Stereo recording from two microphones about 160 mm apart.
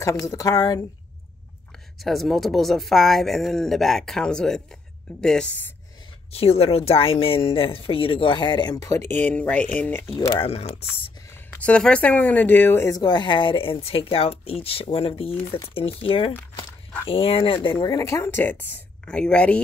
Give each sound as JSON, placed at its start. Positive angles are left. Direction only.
{"t": 0.0, "sound": "speech", "side_deg": 20}
{"t": 2.0, "sound": "speech", "side_deg": 0}
{"t": 6.3, "sound": "speech", "side_deg": 40}
{"t": 10.3, "sound": "speech", "side_deg": 35}
{"t": 11.6, "sound": "speech", "side_deg": 5}
{"t": 17.6, "sound": "speech", "side_deg": 25}